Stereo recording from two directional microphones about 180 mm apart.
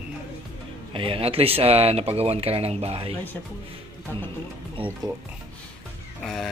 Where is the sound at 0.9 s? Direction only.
30° right (ahead or behind).